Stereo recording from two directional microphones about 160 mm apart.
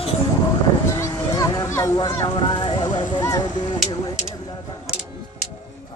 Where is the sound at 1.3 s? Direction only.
20° left (ahead or behind).